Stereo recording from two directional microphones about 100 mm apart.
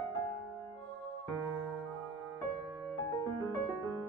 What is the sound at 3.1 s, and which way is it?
Music, 35° left (ahead or behind).